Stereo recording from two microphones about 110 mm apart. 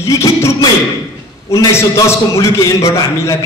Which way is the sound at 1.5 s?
25° left (ahead or behind).